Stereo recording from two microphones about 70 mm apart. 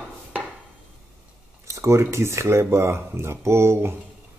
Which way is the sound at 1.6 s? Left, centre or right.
Right.